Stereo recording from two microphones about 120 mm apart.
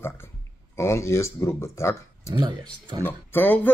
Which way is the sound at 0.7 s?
25° left (ahead or behind).